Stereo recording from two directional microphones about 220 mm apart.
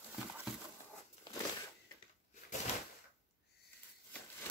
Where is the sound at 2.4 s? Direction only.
40° left (ahead or behind).